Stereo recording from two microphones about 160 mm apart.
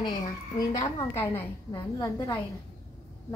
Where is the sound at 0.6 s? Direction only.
20° left (ahead or behind).